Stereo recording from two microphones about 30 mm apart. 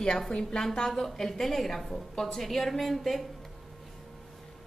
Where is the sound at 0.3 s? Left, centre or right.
Left.